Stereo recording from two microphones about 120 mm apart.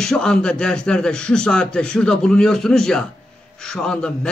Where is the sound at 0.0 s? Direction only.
5° left (ahead or behind).